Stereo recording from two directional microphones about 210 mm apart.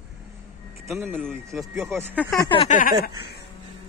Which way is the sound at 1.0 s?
5° left (ahead or behind).